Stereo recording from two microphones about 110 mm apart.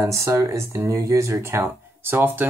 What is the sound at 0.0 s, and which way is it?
Speech, 25° right (ahead or behind).